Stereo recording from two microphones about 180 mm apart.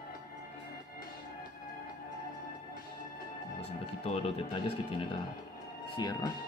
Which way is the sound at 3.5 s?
35° left (ahead or behind).